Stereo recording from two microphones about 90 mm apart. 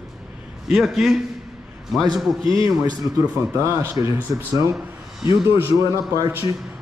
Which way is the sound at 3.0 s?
30° right (ahead or behind).